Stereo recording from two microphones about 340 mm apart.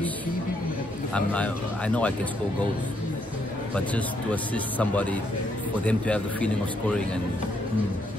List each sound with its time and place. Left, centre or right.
1.1 s speech: centre
3.7 s speech: centre